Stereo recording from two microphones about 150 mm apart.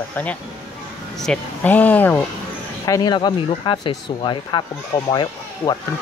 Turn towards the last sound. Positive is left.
turn(degrees=30)  # may be behind; listen again after turning